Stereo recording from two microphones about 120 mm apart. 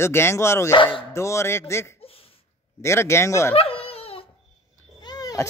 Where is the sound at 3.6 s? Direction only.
55° left (ahead or behind).